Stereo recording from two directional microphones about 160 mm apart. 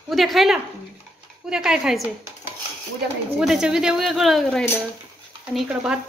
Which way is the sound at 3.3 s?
5° right (ahead or behind).